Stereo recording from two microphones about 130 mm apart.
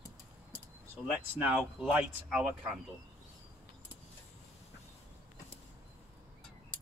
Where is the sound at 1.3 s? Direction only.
10° right (ahead or behind).